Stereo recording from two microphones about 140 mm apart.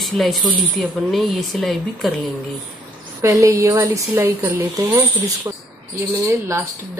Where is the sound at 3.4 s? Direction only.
20° right (ahead or behind).